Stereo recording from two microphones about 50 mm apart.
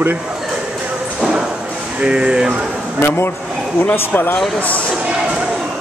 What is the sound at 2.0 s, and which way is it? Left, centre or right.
Speech, centre.